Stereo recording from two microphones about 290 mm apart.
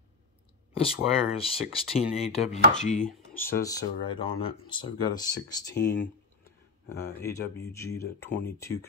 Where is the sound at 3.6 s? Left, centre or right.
Centre.